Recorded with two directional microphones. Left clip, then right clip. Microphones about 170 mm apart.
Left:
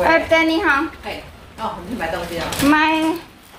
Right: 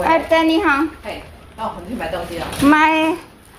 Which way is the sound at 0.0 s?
25° right (ahead or behind).